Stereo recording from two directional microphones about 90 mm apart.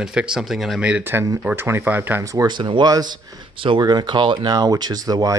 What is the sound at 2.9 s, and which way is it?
Speech, 50° right (ahead or behind).